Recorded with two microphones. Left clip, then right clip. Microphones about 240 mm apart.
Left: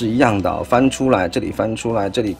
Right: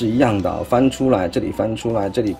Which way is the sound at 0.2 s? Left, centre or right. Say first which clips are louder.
Left 3 dB; centre.